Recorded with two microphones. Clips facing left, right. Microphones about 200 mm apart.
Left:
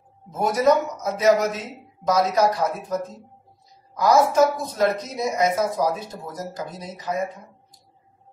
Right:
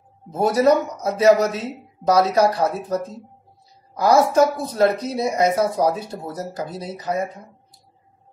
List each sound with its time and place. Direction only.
0.3 s speech: 35° right (ahead or behind)